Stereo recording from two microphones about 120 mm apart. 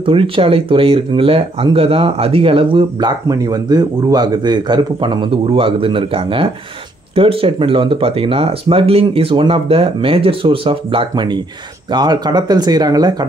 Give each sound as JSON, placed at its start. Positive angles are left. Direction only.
{"t": 0.0, "sound": "speech", "side_deg": -45}